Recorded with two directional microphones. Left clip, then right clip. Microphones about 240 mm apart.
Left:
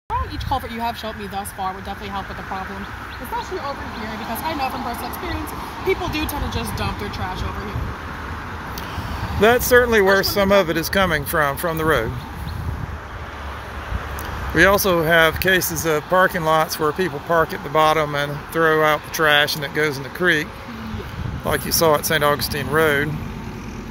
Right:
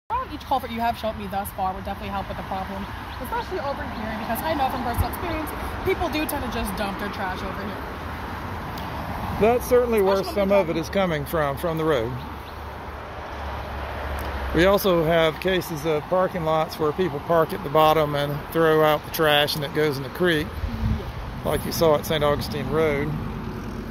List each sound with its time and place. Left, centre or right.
0.5 s speech: centre
6.0 s speech: centre
9.4 s speech: centre
14.5 s speech: centre
21.5 s speech: centre